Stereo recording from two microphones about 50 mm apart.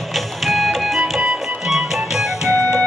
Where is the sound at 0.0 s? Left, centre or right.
Centre.